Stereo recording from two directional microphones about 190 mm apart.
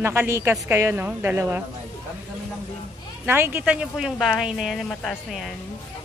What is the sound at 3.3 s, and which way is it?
A woman's voice, 10° right (ahead or behind).